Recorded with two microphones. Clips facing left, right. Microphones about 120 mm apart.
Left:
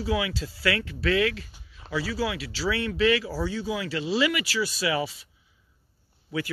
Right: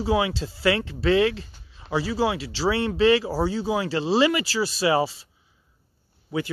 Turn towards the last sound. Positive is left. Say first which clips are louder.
# right 3 dB
turn(degrees=-25)  # may be behind; listen again after turning